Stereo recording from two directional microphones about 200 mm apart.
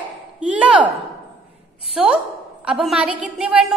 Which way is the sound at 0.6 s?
5° right (ahead or behind).